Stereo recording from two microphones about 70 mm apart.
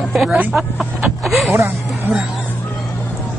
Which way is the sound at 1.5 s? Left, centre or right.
Right.